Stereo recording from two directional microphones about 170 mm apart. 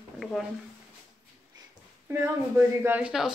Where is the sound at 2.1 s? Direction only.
15° right (ahead or behind).